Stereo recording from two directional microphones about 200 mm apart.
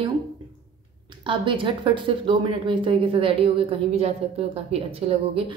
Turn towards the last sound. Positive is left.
turn(degrees=-30)  # may be behind; listen again after turning